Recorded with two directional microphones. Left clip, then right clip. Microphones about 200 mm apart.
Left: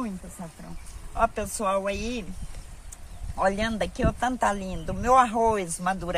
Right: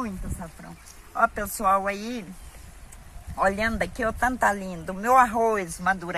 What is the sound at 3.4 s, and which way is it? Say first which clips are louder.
Speech: right 2 dB; 15° left (ahead or behind).